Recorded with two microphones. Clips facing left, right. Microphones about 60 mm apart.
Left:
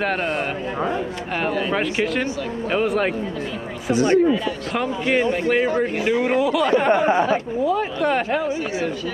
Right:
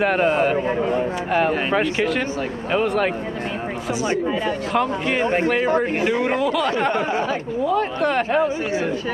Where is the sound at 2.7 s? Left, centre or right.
Centre.